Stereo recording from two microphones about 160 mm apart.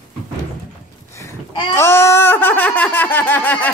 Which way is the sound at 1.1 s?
20° left (ahead or behind).